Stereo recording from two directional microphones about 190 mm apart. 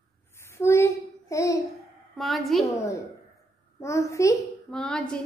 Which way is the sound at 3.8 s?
15° left (ahead or behind).